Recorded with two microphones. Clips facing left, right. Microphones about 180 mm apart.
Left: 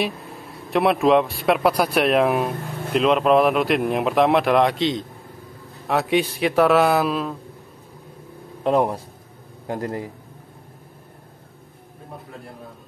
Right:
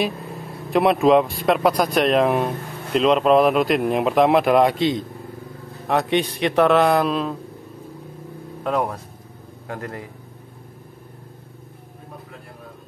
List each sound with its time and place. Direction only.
0.7 s speech: centre (ahead or behind)
8.6 s a man's voice: 30° left (ahead or behind)